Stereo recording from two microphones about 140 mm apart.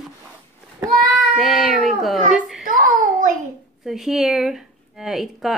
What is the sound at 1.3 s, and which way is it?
Speech, centre (ahead or behind).